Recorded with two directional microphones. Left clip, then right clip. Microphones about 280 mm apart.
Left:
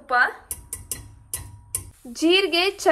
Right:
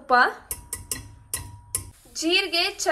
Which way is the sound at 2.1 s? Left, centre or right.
Centre.